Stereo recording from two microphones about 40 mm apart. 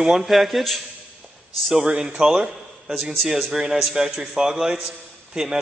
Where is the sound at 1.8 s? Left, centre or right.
Centre.